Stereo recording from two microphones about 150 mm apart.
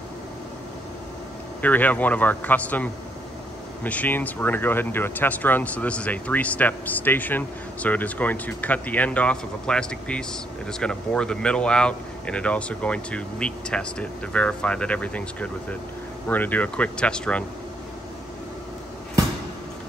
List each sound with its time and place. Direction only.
1.6 s speech: 10° left (ahead or behind)